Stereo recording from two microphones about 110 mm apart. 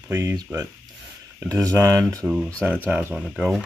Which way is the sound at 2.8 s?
15° right (ahead or behind).